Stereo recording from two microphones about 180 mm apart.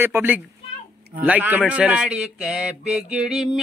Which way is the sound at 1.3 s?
10° right (ahead or behind).